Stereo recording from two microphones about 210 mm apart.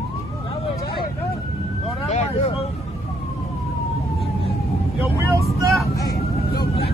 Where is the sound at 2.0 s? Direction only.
30° left (ahead or behind).